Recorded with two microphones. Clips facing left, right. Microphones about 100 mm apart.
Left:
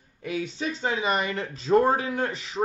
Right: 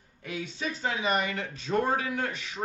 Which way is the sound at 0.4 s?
30° left (ahead or behind).